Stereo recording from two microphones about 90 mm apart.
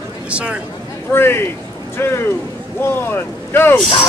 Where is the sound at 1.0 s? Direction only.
25° left (ahead or behind).